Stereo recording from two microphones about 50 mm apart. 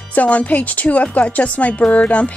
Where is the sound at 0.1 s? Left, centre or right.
Left.